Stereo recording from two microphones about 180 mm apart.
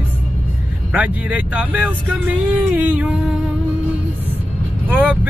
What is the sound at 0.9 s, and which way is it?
Speech, 5° right (ahead or behind).